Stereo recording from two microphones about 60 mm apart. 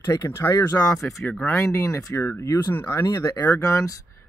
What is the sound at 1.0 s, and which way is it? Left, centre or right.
Speech, left.